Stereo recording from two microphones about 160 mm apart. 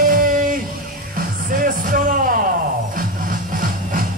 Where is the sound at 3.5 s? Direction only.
60° right (ahead or behind).